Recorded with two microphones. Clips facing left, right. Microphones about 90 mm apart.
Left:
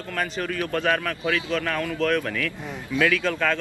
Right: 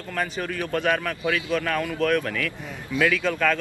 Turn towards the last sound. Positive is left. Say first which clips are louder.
# right 1 dB
turn(degrees=0)  # may be behind; listen again after turning